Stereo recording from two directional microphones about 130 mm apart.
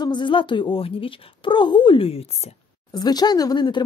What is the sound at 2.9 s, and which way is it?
Speech, 30° left (ahead or behind).